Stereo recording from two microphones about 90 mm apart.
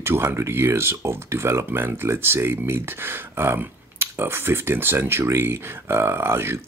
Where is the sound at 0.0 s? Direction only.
25° right (ahead or behind).